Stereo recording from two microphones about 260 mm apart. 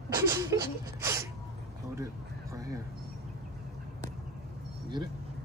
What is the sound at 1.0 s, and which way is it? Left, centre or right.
Sneeze, centre.